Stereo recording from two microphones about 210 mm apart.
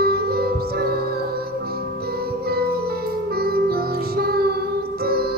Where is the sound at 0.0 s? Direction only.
45° right (ahead or behind).